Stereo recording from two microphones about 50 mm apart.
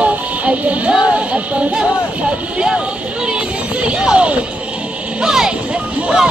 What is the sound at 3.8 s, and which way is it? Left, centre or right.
Speech, right.